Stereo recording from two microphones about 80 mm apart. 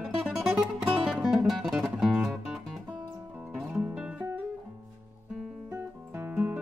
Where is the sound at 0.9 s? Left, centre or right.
Centre.